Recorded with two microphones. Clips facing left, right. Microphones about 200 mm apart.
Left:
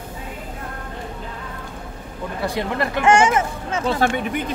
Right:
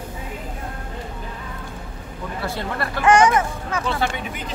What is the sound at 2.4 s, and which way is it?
Speech, 15° left (ahead or behind).